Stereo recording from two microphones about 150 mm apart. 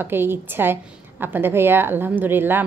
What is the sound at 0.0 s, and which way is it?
A woman's voice, 15° right (ahead or behind).